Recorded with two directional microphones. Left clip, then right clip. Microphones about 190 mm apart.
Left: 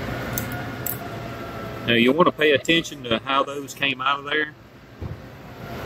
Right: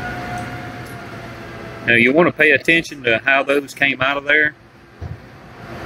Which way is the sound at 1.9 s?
5° right (ahead or behind).